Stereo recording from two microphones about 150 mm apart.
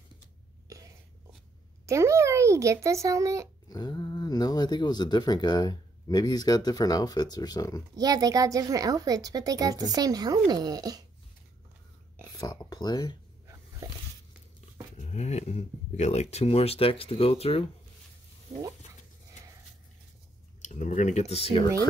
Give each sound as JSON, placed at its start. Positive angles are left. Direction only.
{"t": 0.7, "sound": "cough", "side_deg": -20}
{"t": 1.9, "sound": "speech", "side_deg": -20}
{"t": 3.6, "sound": "speech", "side_deg": 25}
{"t": 7.9, "sound": "speech", "side_deg": -25}
{"t": 12.4, "sound": "a sound", "side_deg": 25}
{"t": 15.0, "sound": "speech", "side_deg": 45}
{"t": 20.6, "sound": "speech", "side_deg": 50}